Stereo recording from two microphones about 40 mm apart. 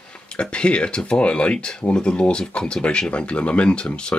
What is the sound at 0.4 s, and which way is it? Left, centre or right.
Speech, left.